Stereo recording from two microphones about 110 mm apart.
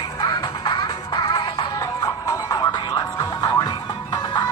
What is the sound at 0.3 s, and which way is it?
Music, 50° left (ahead or behind).